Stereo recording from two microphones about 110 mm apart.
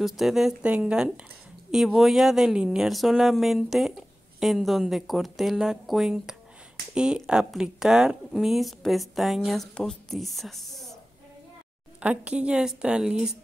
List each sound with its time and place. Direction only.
0.0 s a woman's voice: 5° right (ahead or behind)
12.0 s a woman's voice: 10° right (ahead or behind)